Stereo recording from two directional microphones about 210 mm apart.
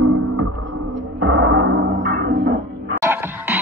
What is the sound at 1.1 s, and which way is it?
Music, 65° right (ahead or behind).